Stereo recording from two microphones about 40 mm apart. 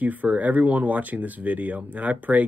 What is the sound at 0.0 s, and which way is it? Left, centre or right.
Speech, right.